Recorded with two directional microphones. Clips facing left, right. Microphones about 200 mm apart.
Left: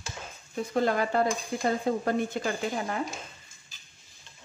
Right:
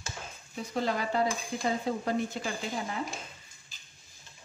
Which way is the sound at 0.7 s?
50° left (ahead or behind).